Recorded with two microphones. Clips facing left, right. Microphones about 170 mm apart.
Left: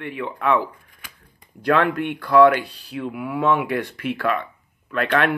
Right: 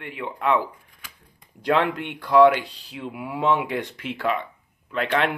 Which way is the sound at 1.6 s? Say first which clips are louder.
Left 3 dB; 20° right (ahead or behind).